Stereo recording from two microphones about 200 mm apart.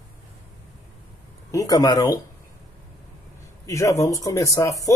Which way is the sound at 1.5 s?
15° left (ahead or behind).